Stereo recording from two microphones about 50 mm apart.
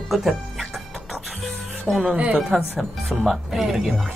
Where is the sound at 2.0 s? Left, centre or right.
Right.